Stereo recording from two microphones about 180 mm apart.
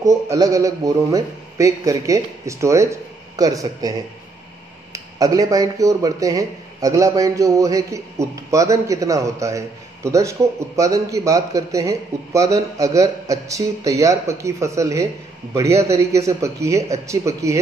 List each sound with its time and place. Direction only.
0.0 s speech: 15° right (ahead or behind)
4.9 s speech: 20° right (ahead or behind)